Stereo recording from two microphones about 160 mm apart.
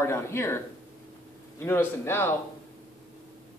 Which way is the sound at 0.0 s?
15° left (ahead or behind).